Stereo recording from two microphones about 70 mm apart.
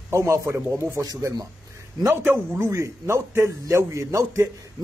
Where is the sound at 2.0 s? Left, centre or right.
Right.